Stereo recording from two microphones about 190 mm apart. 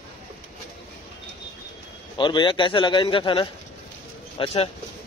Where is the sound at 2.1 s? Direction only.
25° left (ahead or behind).